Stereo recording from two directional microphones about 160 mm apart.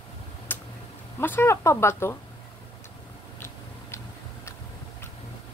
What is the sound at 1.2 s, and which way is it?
Speech, 15° left (ahead or behind).